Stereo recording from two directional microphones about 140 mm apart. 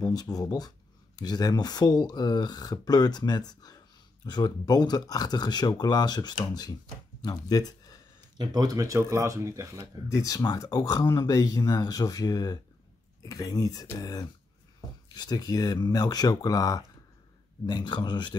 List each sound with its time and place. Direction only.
0.0 s speech: 25° left (ahead or behind)
8.4 s speech: 30° right (ahead or behind)
10.0 s speech: 25° left (ahead or behind)